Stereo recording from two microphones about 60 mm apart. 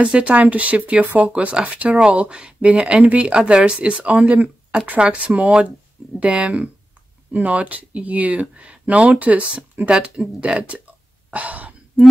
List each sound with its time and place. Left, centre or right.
0.0 s speech: centre